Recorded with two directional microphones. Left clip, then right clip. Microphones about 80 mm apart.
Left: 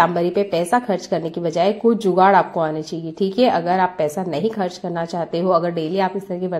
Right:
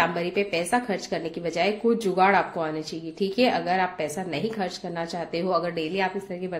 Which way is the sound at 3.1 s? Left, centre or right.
Left.